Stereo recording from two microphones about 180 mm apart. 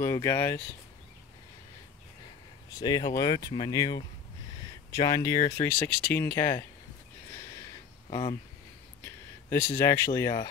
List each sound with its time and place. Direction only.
0.0 s speech: 15° left (ahead or behind)
2.8 s speech: 20° left (ahead or behind)
9.0 s speech: 10° left (ahead or behind)